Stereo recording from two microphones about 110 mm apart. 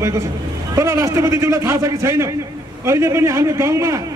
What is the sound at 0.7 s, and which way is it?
A man's voice, 25° right (ahead or behind).